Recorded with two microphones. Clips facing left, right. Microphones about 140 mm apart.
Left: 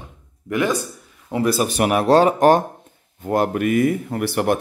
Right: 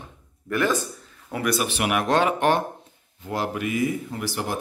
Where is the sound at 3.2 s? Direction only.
50° left (ahead or behind).